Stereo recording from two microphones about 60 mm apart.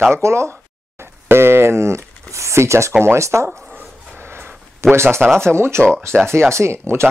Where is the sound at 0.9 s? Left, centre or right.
Right.